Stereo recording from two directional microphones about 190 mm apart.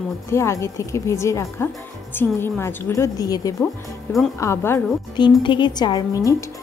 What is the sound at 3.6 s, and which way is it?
Speech, centre (ahead or behind).